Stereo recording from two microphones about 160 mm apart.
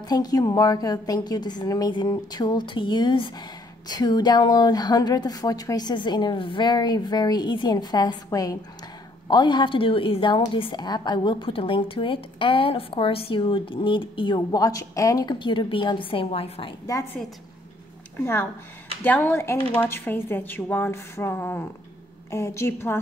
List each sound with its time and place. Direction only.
0.1 s a woman's voice: 25° left (ahead or behind)
18.1 s speech: 15° left (ahead or behind)